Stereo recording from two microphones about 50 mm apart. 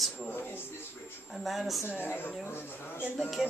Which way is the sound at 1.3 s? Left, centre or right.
Centre.